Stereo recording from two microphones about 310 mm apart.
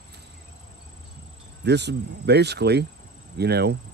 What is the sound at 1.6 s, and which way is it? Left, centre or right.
Speech, right.